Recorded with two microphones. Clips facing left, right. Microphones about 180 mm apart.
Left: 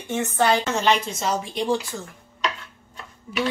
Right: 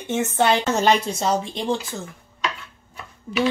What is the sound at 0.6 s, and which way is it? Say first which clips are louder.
A woman's voice: right 3 dB; 40° right (ahead or behind).